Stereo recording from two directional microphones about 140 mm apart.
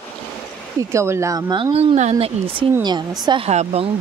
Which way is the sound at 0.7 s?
20° right (ahead or behind).